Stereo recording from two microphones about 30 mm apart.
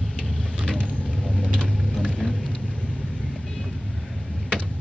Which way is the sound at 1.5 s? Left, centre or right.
Left.